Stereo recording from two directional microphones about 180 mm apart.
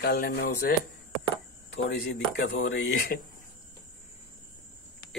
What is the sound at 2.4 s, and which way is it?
Speech, 90° left.